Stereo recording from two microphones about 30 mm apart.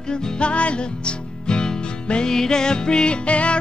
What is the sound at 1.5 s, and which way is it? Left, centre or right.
Music, left.